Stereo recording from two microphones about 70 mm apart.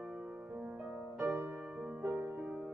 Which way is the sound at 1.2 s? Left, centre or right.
Right.